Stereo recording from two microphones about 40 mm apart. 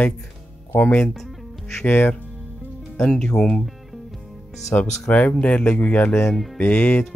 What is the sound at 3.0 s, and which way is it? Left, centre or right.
Speech, left.